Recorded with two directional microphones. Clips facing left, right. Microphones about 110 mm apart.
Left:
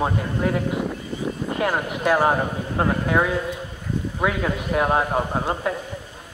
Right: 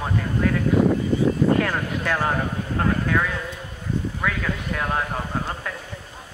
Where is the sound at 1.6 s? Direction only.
20° left (ahead or behind).